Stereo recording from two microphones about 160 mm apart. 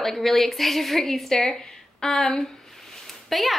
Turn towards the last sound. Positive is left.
turn(degrees=0)  # may be behind; listen again after turning